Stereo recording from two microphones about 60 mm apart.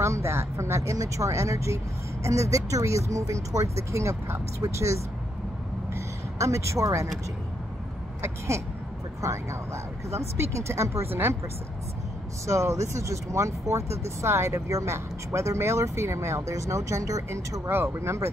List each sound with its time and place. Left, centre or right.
0.0 s speech: right
8.2 s speech: right
12.4 s speech: right
17.6 s speech: right